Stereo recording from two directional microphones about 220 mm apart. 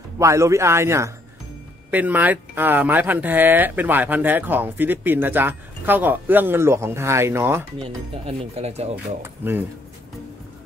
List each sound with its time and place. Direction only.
0.2 s speech: 15° right (ahead or behind)
8.3 s speech: 30° right (ahead or behind)
8.9 s speech: 10° right (ahead or behind)